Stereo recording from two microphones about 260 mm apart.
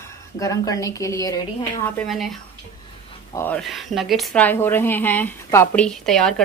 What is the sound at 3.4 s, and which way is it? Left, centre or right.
Speech, centre.